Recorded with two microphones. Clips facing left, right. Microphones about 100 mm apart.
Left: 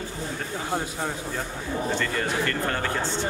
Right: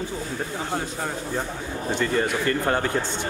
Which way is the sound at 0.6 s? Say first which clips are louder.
Left 3 dB; centre (ahead or behind).